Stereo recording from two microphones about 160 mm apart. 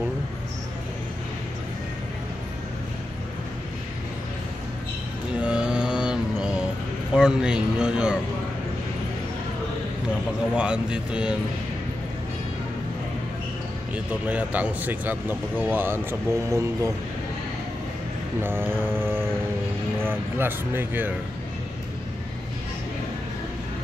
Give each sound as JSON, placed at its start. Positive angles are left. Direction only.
{"t": 5.4, "sound": "mantra", "side_deg": -5}
{"t": 7.2, "sound": "speech", "side_deg": -5}
{"t": 10.5, "sound": "speech", "side_deg": -5}
{"t": 13.9, "sound": "speech", "side_deg": -10}
{"t": 18.4, "sound": "speech", "side_deg": -15}